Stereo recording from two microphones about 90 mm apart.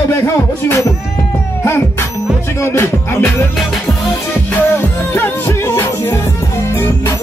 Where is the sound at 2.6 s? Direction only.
30° left (ahead or behind).